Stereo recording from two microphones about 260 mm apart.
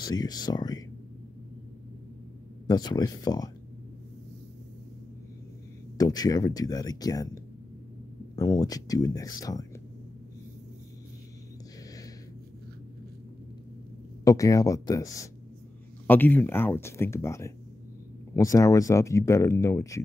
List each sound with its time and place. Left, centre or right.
0.0 s speech: centre
2.6 s speech: centre
5.9 s speech: centre
8.4 s speech: centre
14.2 s speech: centre